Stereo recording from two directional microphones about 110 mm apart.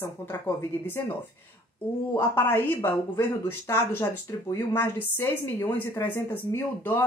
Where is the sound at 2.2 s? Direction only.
20° left (ahead or behind).